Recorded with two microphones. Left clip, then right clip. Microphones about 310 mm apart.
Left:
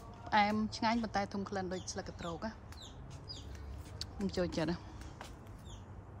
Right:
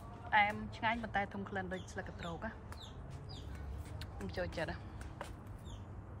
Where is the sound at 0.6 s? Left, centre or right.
Centre.